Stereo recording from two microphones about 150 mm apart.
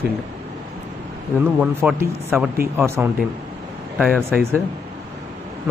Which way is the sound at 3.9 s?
Centre (ahead or behind).